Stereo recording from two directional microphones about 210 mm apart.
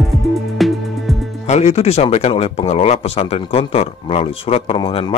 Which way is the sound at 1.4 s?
30° left (ahead or behind).